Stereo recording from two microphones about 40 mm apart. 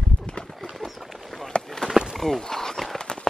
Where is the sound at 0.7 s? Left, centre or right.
Centre.